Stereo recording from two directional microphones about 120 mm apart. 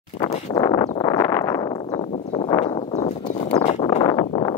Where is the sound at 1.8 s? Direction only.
45° left (ahead or behind).